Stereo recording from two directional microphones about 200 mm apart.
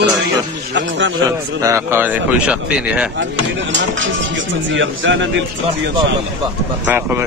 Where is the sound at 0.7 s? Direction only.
65° right (ahead or behind).